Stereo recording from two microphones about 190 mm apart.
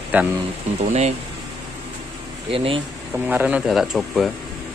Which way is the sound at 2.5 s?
30° right (ahead or behind).